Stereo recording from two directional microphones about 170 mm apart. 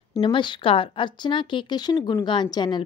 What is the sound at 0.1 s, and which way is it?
A woman's voice, 30° left (ahead or behind).